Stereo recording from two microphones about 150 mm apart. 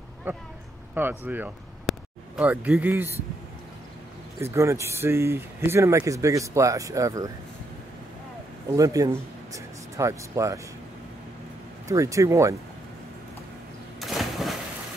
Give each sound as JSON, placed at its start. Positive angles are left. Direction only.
{"t": 0.3, "sound": "speech", "side_deg": -15}
{"t": 1.9, "sound": "a sound", "side_deg": -10}
{"t": 4.4, "sound": "speech", "side_deg": -20}
{"t": 8.7, "sound": "speech", "side_deg": -25}
{"t": 11.9, "sound": "speech", "side_deg": -20}
{"t": 14.0, "sound": "a sound", "side_deg": 0}